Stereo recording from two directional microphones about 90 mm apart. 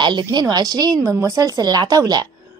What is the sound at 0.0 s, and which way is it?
A woman's voice, 55° right (ahead or behind).